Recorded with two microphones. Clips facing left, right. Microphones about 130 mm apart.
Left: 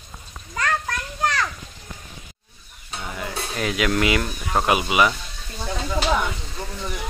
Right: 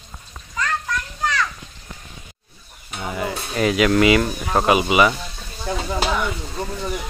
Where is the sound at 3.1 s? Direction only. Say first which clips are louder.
Right 5 dB; 5° right (ahead or behind).